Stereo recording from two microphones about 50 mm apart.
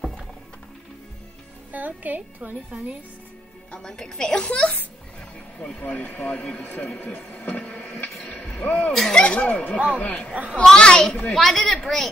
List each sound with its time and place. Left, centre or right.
1.7 s speech: right
2.7 s speech: right
3.7 s a woman's voice: centre
4.5 s speech: left
5.8 s speech: left
6.6 s speech: left
7.0 s a sound: left
8.0 s vehicle: left
9.1 s speech: centre
10.5 s a woman's voice: centre